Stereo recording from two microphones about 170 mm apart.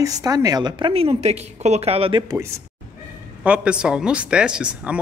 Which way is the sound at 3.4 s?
5° right (ahead or behind).